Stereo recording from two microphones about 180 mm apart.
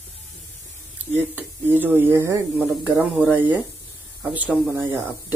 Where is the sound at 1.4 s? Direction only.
10° right (ahead or behind).